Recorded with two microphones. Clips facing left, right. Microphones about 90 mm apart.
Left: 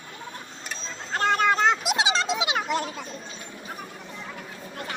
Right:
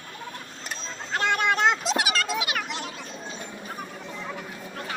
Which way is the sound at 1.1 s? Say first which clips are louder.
Left 2 dB; 35° left (ahead or behind).